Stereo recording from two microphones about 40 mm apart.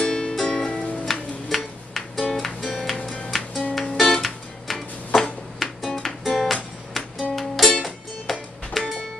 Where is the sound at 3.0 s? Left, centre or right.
Centre.